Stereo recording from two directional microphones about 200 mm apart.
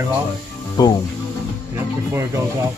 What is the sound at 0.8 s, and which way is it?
Speech, 20° left (ahead or behind).